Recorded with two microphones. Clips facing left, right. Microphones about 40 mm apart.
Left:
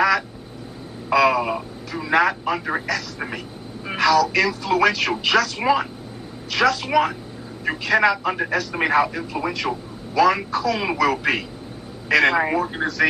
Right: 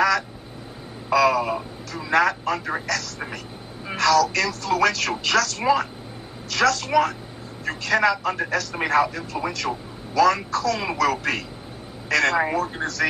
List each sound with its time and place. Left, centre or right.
1.1 s speech: centre